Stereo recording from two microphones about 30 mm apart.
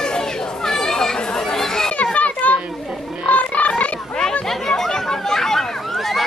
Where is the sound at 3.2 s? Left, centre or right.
Left.